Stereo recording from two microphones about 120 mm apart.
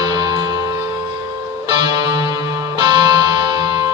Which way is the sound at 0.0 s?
35° right (ahead or behind).